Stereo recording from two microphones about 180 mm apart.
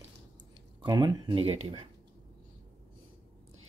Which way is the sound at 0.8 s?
25° right (ahead or behind).